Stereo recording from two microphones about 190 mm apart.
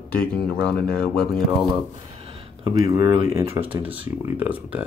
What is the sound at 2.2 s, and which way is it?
Speech, 20° right (ahead or behind).